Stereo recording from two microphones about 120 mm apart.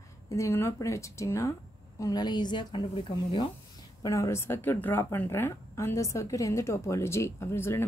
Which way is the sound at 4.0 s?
25° left (ahead or behind).